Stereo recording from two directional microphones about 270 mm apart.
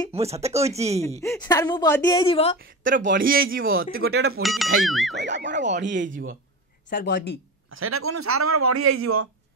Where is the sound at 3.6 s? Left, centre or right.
Right.